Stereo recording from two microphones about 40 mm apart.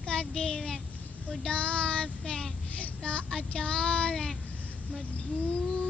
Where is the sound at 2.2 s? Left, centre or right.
Centre.